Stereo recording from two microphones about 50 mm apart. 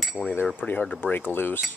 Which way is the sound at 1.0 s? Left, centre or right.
Left.